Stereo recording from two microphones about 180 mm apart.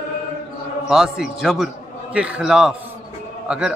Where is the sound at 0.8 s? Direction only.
5° right (ahead or behind).